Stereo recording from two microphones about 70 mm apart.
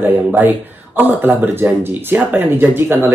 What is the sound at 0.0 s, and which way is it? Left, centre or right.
Speech, right.